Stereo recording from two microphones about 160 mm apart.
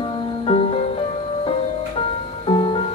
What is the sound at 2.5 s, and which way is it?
Music, 30° left (ahead or behind).